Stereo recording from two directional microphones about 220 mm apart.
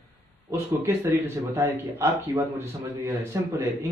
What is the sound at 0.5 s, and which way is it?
Speech, 10° right (ahead or behind).